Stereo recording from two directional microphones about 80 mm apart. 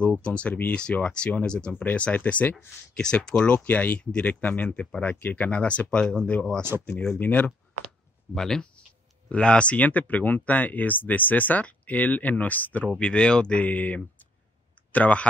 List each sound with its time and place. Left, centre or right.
0.0 s speech: centre
8.4 s speech: centre